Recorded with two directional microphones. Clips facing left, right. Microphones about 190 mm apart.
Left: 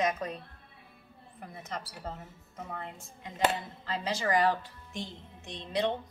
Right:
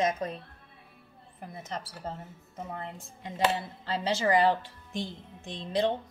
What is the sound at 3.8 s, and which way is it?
A woman's voice, 30° right (ahead or behind).